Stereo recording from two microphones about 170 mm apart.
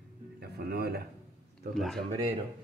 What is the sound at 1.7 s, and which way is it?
Speech, centre (ahead or behind).